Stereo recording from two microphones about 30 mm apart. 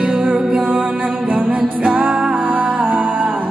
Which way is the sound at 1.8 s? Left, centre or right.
Right.